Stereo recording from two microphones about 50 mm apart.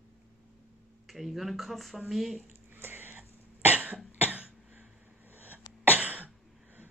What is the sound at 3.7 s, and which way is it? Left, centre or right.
Cough, right.